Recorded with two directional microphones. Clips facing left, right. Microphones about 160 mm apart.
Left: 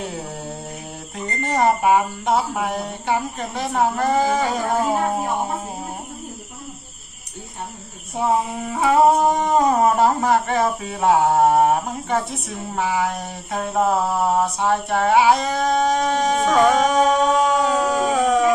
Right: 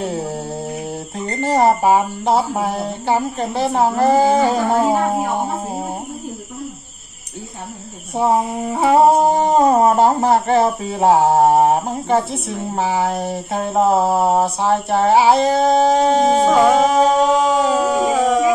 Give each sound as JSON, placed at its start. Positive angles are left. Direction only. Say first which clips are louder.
{"t": 1.4, "sound": "humming", "louder": "right 4 dB", "side_deg": -30}
{"t": 8.1, "sound": "humming", "louder": "right 4 dB", "side_deg": -35}
{"t": 17.7, "sound": "howl", "louder": "right 3 dB", "side_deg": -5}